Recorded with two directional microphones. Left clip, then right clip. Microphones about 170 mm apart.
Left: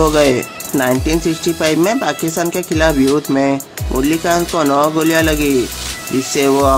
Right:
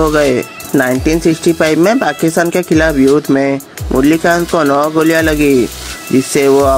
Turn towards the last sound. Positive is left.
turn(degrees=-30)  # may be behind; listen again after turning